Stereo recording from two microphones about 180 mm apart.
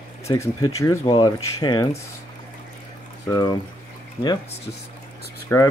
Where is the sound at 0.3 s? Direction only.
20° left (ahead or behind).